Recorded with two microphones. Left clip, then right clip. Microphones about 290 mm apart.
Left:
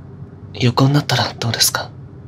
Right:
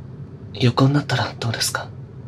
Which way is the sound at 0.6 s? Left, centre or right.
Centre.